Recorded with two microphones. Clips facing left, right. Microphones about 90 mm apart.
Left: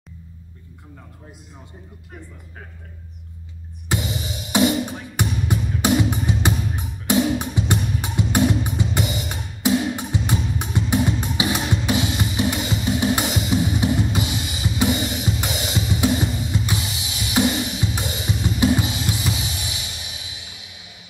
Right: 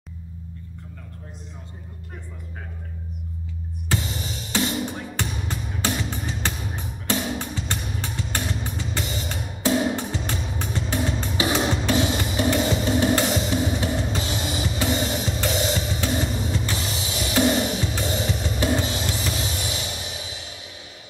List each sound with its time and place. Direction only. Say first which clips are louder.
3.9 s music: left 2 dB; 15° left (ahead or behind)
15.2 s drum kit: right 2 dB; 15° left (ahead or behind)
16.5 s music: left 2 dB; 15° left (ahead or behind)
17.7 s drum kit: right 1 dB; 15° left (ahead or behind)